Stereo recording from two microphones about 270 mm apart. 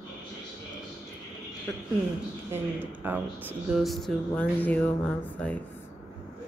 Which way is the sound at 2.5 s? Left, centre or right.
Centre.